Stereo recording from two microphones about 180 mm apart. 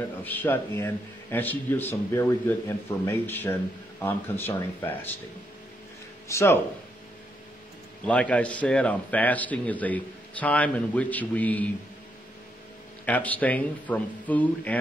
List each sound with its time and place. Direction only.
0.2 s a man's voice: 10° left (ahead or behind)
6.2 s speech: 15° left (ahead or behind)
8.1 s a man's voice: 5° left (ahead or behind)
13.0 s a man's voice: 10° left (ahead or behind)